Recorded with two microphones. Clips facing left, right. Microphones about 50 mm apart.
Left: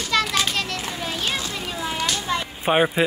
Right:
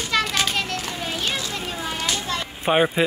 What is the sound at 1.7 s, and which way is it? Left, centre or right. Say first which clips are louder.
Children playing: left 1 dB; right.